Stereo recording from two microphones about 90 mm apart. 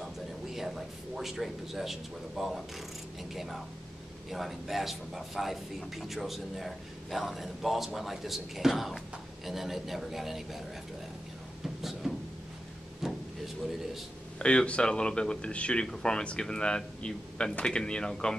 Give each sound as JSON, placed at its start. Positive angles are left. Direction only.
{"t": 0.0, "sound": "a man's voice", "side_deg": -5}
{"t": 11.6, "sound": "a sound", "side_deg": 0}
{"t": 14.4, "sound": "a man's voice", "side_deg": 10}